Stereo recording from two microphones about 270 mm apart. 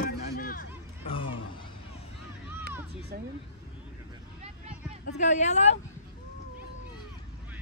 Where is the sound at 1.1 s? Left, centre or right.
Centre.